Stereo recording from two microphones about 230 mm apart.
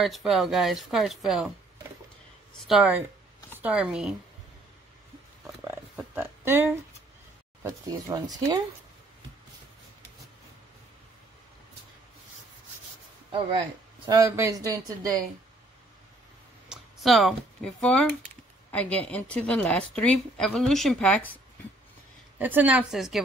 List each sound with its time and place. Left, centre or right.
0.0 s speech: centre
2.6 s speech: centre
5.6 s a sound: centre
7.6 s speech: centre
13.3 s speech: right
16.6 s speech: centre
22.4 s speech: centre